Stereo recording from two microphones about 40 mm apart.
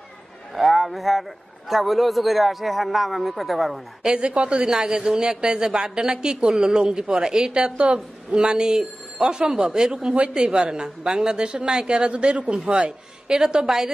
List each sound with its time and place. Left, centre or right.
0.6 s a man's voice: centre
4.0 s a woman's voice: right
12.0 s a woman's voice: right